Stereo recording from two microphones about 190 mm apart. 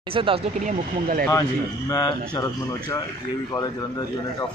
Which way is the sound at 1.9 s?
20° left (ahead or behind).